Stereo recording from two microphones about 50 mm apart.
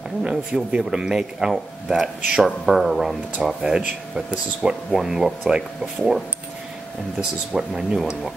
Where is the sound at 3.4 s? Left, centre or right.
Centre.